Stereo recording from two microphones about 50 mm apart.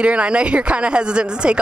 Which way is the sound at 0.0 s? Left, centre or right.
Right.